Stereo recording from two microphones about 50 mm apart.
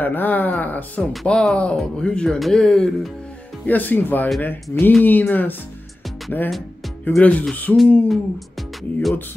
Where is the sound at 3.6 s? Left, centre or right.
Left.